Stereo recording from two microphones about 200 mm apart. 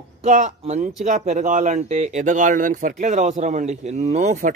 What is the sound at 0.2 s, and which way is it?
Speech, 40° right (ahead or behind).